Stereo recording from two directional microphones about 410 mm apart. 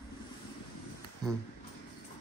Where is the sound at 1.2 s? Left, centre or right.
Centre.